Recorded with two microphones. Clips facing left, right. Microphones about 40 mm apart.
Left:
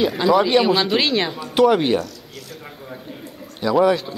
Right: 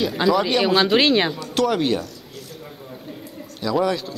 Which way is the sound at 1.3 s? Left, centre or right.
Centre.